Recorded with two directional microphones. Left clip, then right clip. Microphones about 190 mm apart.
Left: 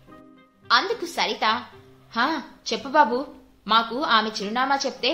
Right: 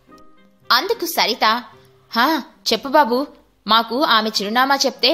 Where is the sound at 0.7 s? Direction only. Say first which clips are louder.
Right 4 dB; 35° right (ahead or behind).